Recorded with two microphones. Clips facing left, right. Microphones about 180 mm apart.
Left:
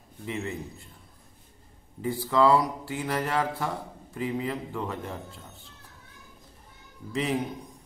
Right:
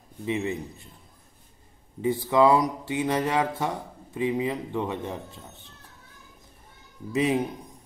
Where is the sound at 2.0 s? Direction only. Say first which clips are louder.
Right 3 dB; 20° right (ahead or behind).